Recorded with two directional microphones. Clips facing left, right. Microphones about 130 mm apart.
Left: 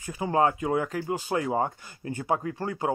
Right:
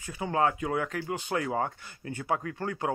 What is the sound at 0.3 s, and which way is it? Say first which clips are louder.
Speech: left 3 dB; 20° left (ahead or behind).